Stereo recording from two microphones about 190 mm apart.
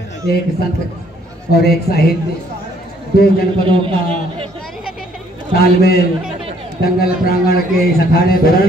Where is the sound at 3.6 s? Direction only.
30° right (ahead or behind).